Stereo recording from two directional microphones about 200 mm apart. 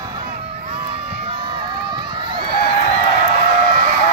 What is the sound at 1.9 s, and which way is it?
Run, 20° right (ahead or behind).